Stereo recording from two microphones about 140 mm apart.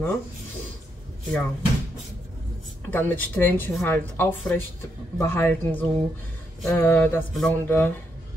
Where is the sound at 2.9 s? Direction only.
15° left (ahead or behind).